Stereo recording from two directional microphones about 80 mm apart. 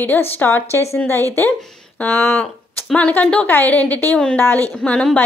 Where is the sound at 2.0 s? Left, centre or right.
Centre.